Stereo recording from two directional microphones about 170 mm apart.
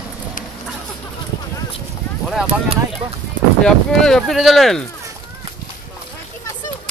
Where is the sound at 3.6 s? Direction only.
5° left (ahead or behind).